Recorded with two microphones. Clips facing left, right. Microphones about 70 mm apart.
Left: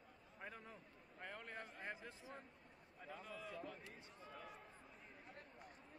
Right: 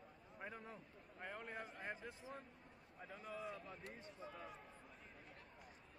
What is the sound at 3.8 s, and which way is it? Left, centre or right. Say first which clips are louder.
Speech: right 4 dB; right.